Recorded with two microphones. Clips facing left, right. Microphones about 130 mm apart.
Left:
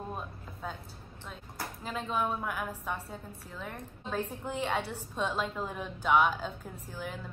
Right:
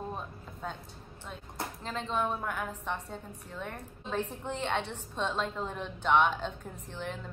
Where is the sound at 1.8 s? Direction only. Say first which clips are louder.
Even; 10° left (ahead or behind).